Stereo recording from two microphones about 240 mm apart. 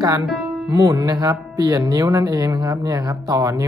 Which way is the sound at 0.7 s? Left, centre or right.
Centre.